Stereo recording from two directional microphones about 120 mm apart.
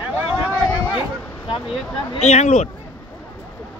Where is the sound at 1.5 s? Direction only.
45° left (ahead or behind).